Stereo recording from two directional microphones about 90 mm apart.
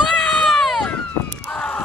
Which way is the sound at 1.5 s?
15° left (ahead or behind).